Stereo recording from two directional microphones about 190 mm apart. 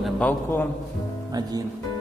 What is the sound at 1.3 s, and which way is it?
Speech, 20° right (ahead or behind).